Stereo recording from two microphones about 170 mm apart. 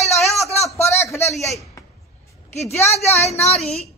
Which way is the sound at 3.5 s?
Centre (ahead or behind).